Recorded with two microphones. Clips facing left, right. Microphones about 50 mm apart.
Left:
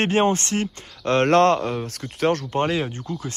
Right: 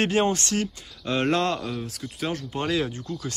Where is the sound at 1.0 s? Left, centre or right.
Left.